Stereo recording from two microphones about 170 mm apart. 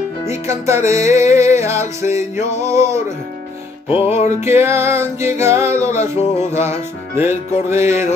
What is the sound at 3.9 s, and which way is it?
Music, 35° left (ahead or behind).